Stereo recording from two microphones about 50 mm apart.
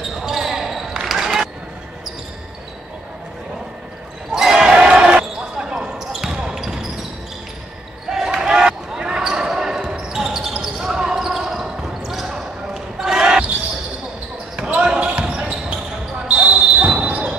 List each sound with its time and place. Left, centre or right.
0.1 s basketball bounce: centre
4.3 s basketball bounce: centre
5.9 s a sound: centre
6.3 s basketball bounce: centre
8.1 s basketball bounce: centre
14.6 s basketball bounce: right